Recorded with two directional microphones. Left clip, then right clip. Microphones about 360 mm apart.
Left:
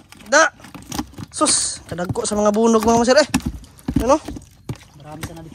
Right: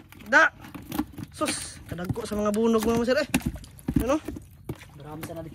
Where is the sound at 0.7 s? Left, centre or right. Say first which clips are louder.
Left 4 dB; left.